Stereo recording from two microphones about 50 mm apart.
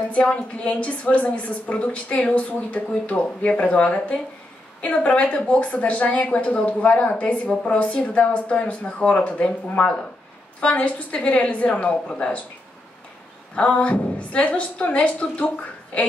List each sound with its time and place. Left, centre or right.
0.1 s a woman's voice: left
13.6 s a woman's voice: left